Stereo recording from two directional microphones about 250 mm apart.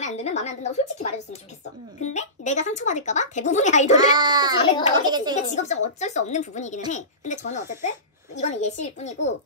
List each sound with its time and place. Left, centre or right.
0.0 s speech: left
3.9 s a child's voice: centre
4.6 s speech: centre
5.0 s a child's voice: centre
5.3 s speech: left